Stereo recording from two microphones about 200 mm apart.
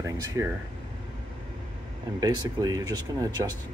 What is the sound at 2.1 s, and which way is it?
Speech, 20° right (ahead or behind).